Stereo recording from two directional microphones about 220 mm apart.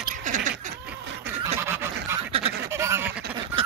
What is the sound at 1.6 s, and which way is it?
Goose, 10° right (ahead or behind).